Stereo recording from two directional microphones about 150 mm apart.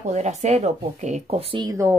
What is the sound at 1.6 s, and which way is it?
Speech, 20° right (ahead or behind).